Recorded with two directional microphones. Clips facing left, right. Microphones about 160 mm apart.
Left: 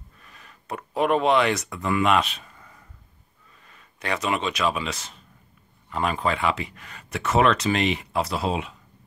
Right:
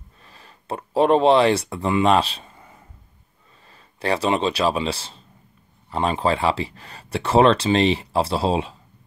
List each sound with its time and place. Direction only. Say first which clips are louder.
0.2 s speech: right 4 dB; 30° right (ahead or behind)